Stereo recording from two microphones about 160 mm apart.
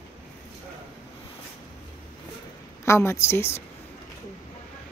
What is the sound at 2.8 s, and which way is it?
Speech, 15° left (ahead or behind).